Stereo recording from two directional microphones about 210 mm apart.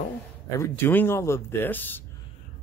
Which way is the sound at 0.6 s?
10° left (ahead or behind).